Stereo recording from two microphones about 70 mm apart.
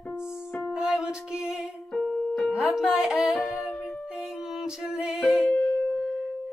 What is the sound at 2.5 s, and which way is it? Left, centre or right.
Music, centre.